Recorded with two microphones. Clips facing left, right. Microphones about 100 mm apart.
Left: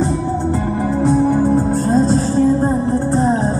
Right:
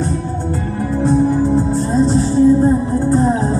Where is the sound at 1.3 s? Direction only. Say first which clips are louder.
Even; 50° left (ahead or behind).